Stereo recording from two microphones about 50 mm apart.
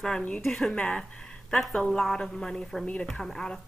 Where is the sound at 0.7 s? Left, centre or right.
Centre.